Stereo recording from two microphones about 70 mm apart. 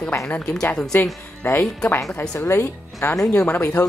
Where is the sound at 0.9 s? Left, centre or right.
Left.